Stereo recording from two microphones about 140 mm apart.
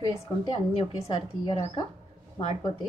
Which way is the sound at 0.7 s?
40° left (ahead or behind).